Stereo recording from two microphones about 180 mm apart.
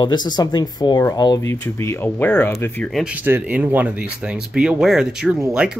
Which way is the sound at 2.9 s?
5° right (ahead or behind).